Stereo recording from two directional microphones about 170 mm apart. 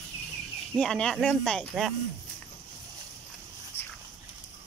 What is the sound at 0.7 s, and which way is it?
Speech, 5° left (ahead or behind).